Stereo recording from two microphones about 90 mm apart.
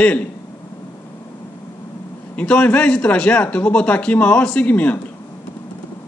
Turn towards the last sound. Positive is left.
turn(degrees=15)  # may be behind; listen again after turning